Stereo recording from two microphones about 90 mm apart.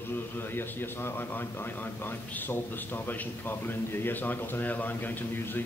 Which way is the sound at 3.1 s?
25° left (ahead or behind).